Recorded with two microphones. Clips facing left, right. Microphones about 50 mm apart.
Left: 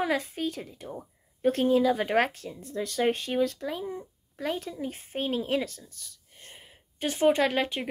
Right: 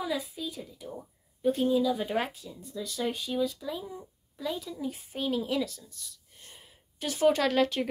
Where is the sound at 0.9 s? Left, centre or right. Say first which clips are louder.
Left 2 dB; left.